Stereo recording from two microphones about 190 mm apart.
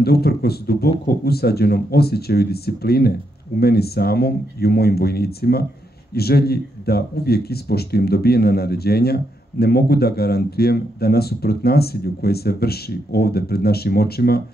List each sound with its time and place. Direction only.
0.0 s speech: 55° left (ahead or behind)